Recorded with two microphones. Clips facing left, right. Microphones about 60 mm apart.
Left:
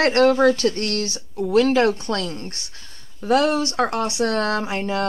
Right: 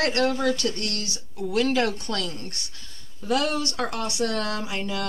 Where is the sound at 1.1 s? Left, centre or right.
Left.